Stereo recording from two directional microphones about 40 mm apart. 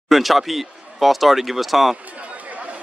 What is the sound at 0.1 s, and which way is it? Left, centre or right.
Speech, centre.